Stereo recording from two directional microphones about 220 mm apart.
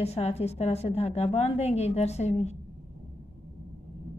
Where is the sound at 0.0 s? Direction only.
30° left (ahead or behind).